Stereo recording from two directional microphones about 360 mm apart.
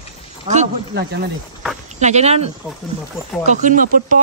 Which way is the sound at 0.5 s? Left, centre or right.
Right.